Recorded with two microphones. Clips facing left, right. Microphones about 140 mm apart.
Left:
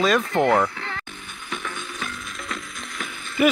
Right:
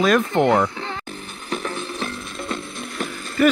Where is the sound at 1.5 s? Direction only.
35° right (ahead or behind).